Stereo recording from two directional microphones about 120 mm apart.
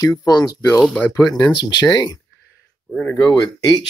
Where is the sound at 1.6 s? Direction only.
35° left (ahead or behind).